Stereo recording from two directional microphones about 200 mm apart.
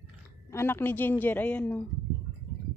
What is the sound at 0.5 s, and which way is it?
Speech, 10° left (ahead or behind).